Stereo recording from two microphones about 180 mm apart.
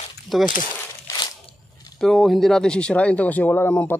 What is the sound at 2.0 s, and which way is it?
Speech, centre (ahead or behind).